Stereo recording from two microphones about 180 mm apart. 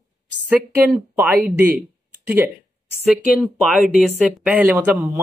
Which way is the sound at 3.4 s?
5° right (ahead or behind).